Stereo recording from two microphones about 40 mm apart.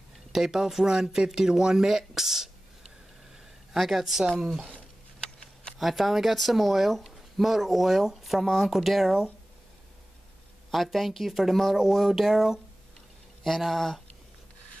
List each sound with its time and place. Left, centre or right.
0.3 s speech: centre
3.7 s speech: centre
5.2 s a sound: left
5.8 s speech: centre
10.7 s speech: centre
13.7 s speech: centre